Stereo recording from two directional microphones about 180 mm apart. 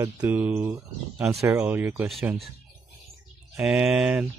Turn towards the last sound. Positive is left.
turn(degrees=-5)  # may be behind; listen again after turning